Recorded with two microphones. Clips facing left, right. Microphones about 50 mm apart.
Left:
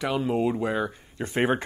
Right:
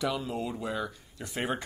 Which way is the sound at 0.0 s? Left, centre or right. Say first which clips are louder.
Left 7 dB; left.